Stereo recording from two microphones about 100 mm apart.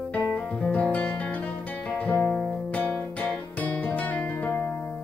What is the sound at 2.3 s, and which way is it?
Music, 15° left (ahead or behind).